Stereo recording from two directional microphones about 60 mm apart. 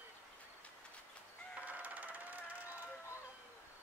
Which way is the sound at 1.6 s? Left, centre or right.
Right.